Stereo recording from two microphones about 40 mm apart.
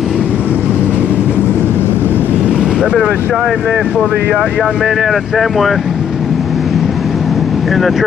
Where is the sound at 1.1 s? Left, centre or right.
Left.